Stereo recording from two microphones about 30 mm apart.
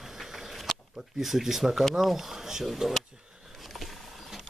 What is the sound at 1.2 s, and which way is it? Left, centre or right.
Speech, centre.